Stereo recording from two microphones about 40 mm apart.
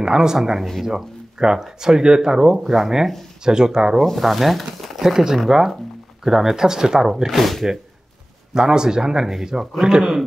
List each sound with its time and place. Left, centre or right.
0.0 s speech: centre
0.4 s speech: centre
2.5 s speech: centre
3.4 s speech: centre
4.0 s speech: centre
8.5 s speech: centre